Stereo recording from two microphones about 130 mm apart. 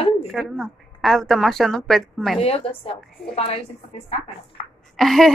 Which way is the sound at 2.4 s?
45° left (ahead or behind).